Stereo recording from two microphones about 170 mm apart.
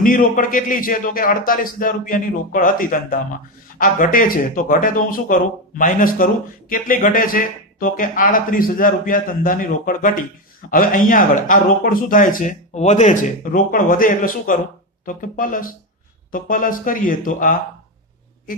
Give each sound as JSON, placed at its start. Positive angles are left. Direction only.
{"t": 0.0, "sound": "speech", "side_deg": 55}